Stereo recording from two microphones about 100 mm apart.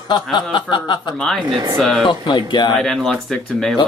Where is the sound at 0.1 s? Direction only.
50° left (ahead or behind).